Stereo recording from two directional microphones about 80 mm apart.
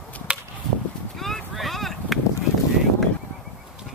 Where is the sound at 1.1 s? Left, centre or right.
Centre.